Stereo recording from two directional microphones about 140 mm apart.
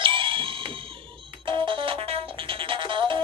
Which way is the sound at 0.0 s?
35° right (ahead or behind).